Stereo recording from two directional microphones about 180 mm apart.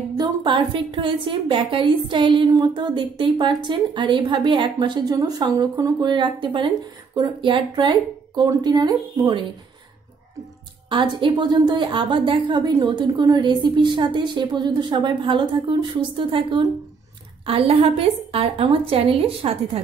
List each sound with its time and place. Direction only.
0.2 s a woman's voice: 25° right (ahead or behind)
10.9 s a woman's voice: 25° right (ahead or behind)